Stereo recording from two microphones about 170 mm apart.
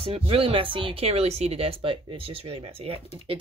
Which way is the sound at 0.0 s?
35° right (ahead or behind).